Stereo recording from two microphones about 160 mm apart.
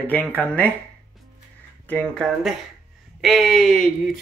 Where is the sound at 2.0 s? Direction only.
Centre (ahead or behind).